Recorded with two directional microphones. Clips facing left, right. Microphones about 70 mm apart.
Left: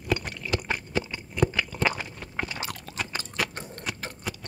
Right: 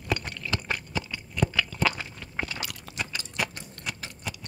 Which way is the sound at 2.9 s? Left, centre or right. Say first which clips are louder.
Left 1 dB; left.